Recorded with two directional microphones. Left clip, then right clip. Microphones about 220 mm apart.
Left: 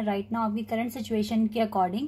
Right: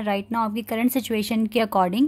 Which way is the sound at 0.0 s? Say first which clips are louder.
Right 5 dB; 40° right (ahead or behind).